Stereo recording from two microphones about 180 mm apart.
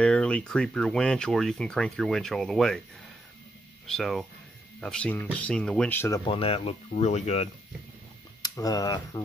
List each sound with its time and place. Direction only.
0.0 s speech: 5° left (ahead or behind)
3.8 s speech: centre (ahead or behind)
6.2 s speech: 30° left (ahead or behind)
8.4 s speech: 20° left (ahead or behind)